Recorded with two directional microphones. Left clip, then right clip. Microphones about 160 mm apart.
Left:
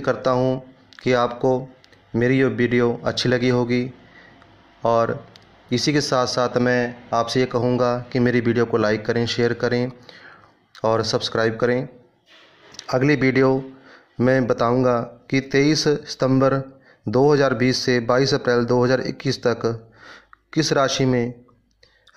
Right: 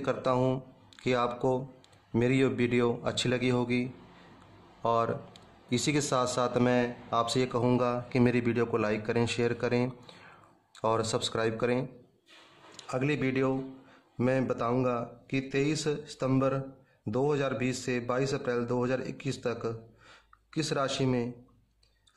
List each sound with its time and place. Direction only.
0.0 s speech: 10° left (ahead or behind)
12.8 s speech: 25° left (ahead or behind)